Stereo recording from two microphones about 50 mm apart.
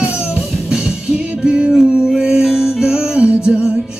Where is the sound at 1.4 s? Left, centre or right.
Centre.